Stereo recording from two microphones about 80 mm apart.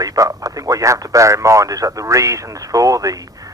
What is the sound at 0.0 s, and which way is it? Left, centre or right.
Speech, right.